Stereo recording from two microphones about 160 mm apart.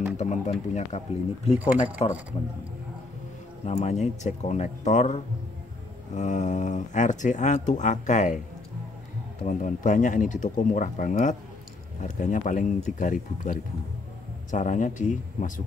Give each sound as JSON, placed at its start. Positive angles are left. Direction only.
{"t": 0.2, "sound": "a man's voice", "side_deg": 45}
{"t": 3.6, "sound": "speech", "side_deg": 45}
{"t": 9.4, "sound": "speech", "side_deg": 55}